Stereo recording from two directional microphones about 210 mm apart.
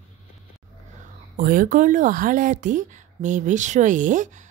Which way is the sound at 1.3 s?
40° right (ahead or behind).